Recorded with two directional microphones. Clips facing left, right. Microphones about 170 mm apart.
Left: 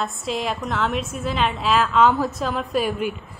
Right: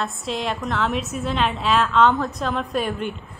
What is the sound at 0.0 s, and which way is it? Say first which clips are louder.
A woman's voice: left 1 dB; centre (ahead or behind).